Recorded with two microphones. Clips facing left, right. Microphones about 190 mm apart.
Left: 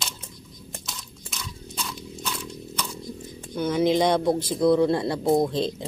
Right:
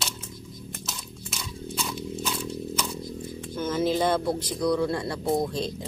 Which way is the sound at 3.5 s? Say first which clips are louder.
Left 4 dB; 15° left (ahead or behind).